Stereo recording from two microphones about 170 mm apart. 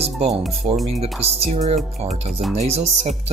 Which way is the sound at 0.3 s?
Centre (ahead or behind).